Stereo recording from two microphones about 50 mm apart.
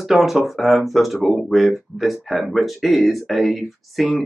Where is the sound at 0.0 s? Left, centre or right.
Centre.